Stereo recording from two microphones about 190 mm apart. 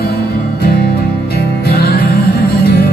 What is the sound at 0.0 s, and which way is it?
Music, 55° left (ahead or behind).